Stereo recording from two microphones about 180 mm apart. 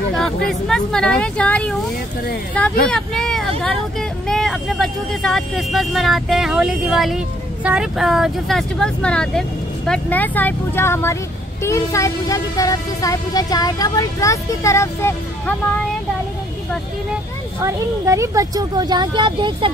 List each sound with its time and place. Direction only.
0.5 s speech: 5° left (ahead or behind)
2.9 s speech: centre (ahead or behind)
11.6 s a sound: 15° left (ahead or behind)
17.6 s speech: 15° right (ahead or behind)